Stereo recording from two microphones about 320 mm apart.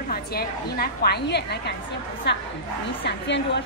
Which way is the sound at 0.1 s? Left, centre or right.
Left.